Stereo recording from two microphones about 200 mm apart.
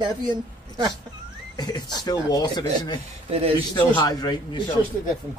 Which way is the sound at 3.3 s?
30° right (ahead or behind).